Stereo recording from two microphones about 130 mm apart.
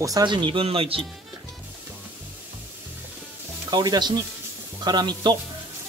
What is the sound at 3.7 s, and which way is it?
Speech, 30° right (ahead or behind).